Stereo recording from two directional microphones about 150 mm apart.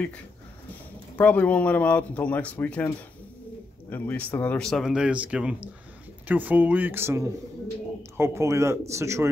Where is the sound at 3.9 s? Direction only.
10° left (ahead or behind).